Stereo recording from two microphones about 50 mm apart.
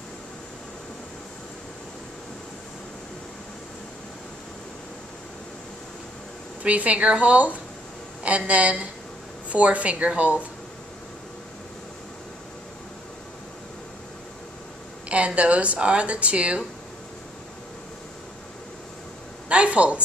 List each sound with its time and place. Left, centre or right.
6.6 s speech: right
15.0 s speech: right
19.5 s a sound: right